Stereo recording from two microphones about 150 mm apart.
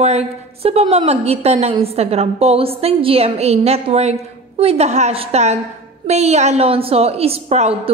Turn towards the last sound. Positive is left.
turn(degrees=-45)  # may be behind; listen again after turning